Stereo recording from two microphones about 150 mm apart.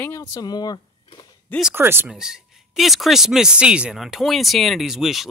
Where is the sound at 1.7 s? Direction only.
15° right (ahead or behind).